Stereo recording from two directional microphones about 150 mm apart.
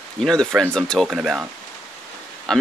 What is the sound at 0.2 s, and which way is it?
Speech, 5° left (ahead or behind).